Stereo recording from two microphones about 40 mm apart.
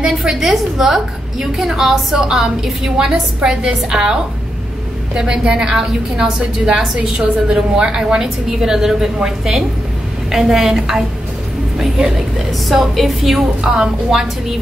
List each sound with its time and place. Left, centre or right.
0.0 s a woman's voice: centre
12.6 s a woman's voice: centre